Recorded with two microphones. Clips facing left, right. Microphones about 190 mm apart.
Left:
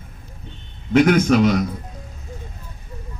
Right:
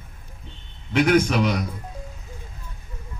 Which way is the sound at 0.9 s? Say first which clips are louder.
Left 4 dB; 50° left (ahead or behind).